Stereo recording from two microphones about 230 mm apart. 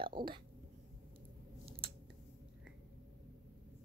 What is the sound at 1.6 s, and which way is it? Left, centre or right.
Scissors, right.